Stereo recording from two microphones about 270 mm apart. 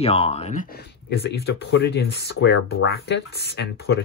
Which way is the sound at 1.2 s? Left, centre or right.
Left.